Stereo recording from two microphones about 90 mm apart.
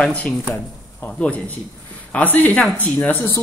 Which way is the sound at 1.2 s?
15° left (ahead or behind).